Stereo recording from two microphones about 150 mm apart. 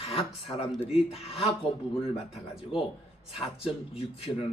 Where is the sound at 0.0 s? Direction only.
40° left (ahead or behind).